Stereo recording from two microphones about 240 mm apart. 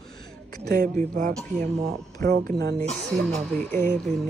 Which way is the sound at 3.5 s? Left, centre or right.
Centre.